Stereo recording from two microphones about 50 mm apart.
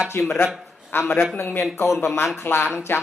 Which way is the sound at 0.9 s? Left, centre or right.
Left.